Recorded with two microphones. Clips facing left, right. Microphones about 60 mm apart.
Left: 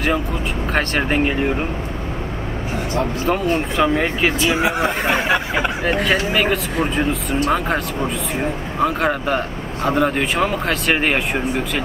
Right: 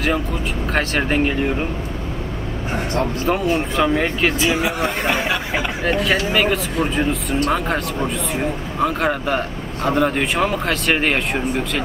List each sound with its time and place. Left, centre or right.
0.7 s speech: centre
3.3 s speech: centre
4.6 s speech: centre
4.8 s speech: centre
6.3 s speech: centre